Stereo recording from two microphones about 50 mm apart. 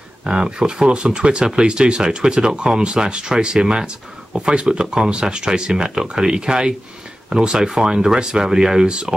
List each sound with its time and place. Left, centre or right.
0.2 s speech: centre